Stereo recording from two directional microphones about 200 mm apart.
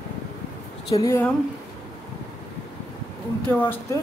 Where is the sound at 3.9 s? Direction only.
15° left (ahead or behind).